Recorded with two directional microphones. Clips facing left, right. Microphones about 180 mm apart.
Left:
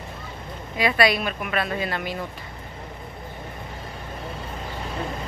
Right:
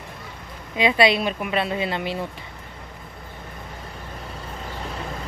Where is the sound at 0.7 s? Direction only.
20° right (ahead or behind).